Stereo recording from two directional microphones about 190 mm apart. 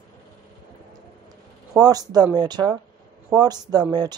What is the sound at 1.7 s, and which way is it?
Speech, 20° right (ahead or behind).